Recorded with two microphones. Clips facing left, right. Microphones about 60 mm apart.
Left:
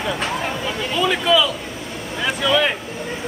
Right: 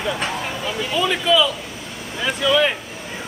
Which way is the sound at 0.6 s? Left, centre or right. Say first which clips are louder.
Right 1 dB; centre.